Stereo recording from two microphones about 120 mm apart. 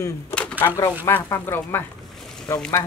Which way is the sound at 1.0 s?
20° left (ahead or behind).